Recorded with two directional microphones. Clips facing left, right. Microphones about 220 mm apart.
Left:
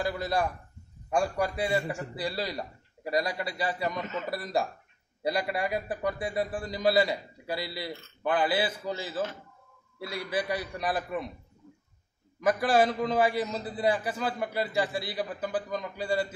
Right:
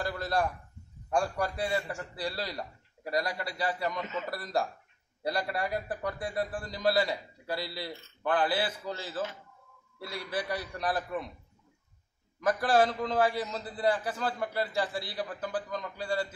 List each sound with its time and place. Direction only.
0.0 s a man's voice: 10° left (ahead or behind)
12.4 s a man's voice: 15° left (ahead or behind)